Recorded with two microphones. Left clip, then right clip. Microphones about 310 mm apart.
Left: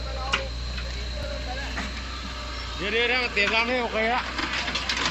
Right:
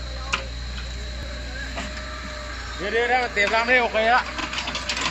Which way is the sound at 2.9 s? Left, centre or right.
Right.